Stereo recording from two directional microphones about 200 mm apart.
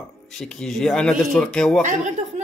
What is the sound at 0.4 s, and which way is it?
Speech, centre (ahead or behind).